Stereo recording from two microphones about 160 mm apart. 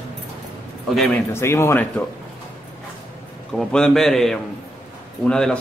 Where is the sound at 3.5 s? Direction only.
5° left (ahead or behind).